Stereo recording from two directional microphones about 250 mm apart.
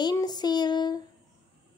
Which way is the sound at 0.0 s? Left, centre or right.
Centre.